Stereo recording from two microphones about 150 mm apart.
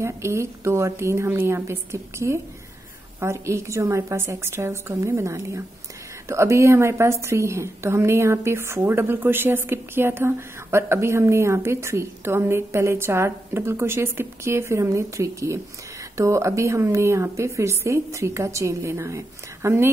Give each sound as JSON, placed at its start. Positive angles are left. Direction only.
{"t": 0.0, "sound": "a woman's voice", "side_deg": -20}